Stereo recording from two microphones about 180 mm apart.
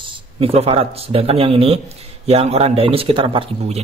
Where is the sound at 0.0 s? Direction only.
30° right (ahead or behind).